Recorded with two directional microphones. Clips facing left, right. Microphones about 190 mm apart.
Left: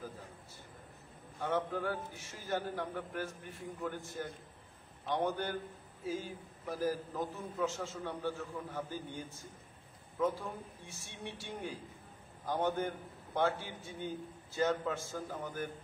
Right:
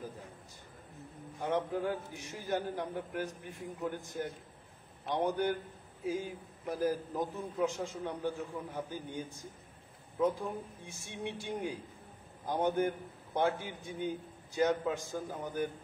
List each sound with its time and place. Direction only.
1.4 s a man's voice: 20° right (ahead or behind)
10.9 s a man's voice: 15° right (ahead or behind)